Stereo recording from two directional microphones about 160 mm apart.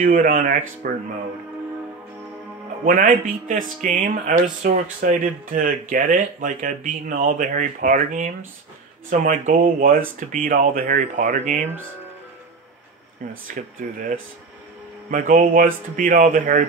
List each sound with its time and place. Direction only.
0.0 s speech: 55° right (ahead or behind)
2.8 s speech: 60° right (ahead or behind)
13.6 s speech: 55° right (ahead or behind)